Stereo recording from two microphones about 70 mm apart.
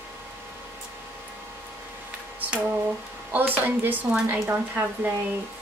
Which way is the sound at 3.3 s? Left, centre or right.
Right.